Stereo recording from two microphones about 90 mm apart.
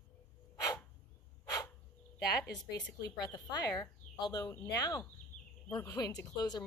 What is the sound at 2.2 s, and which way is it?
A woman's voice, 45° left (ahead or behind).